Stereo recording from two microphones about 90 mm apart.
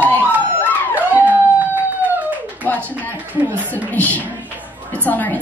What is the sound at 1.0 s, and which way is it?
Howl, 20° right (ahead or behind).